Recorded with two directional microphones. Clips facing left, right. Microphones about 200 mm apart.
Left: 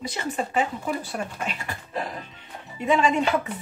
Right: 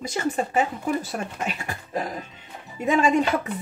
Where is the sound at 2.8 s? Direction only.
45° right (ahead or behind).